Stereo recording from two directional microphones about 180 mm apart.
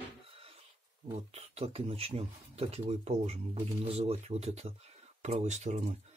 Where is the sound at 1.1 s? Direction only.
35° right (ahead or behind).